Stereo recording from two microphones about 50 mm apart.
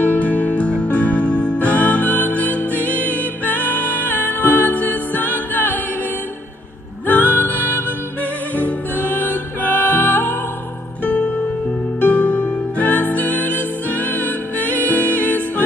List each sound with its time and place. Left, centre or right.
0.0 s music: left
7.1 s music: left